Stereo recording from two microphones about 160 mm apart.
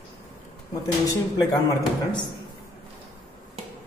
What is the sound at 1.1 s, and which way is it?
Speech, 20° left (ahead or behind).